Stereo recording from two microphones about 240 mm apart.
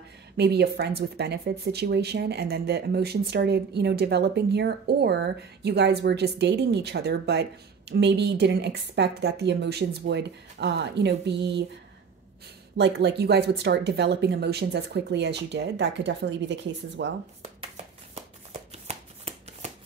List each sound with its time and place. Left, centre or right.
0.4 s speech: right
12.7 s speech: right
17.6 s a sound: right
18.9 s shuffling cards: right